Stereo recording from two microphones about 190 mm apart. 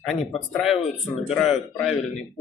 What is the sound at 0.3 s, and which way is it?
A man's voice, centre (ahead or behind).